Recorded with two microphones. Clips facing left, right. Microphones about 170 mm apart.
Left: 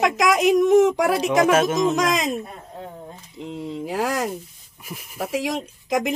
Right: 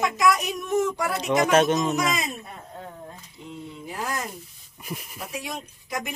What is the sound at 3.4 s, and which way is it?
A woman's voice, 85° left.